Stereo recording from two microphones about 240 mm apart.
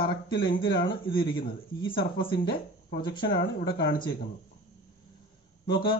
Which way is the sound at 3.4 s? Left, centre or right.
Left.